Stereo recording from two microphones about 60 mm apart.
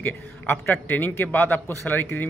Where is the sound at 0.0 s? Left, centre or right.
Left.